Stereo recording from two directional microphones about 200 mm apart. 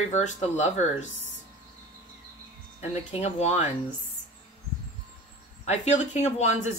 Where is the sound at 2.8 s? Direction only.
35° left (ahead or behind).